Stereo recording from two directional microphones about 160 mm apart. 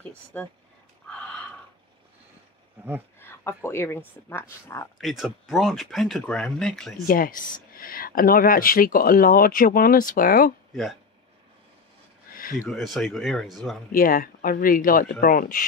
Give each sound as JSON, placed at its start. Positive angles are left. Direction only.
{"t": 0.3, "sound": "speech", "side_deg": 10}
{"t": 3.2, "sound": "speech", "side_deg": 15}
{"t": 4.9, "sound": "speech", "side_deg": 0}
{"t": 7.1, "sound": "speech", "side_deg": 60}
{"t": 12.3, "sound": "a sound", "side_deg": 60}
{"t": 12.6, "sound": "speech", "side_deg": 0}
{"t": 13.9, "sound": "speech", "side_deg": 65}